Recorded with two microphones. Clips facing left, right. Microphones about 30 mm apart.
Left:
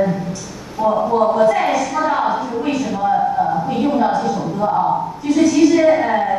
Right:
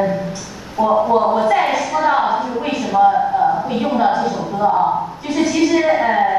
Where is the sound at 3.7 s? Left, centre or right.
Centre.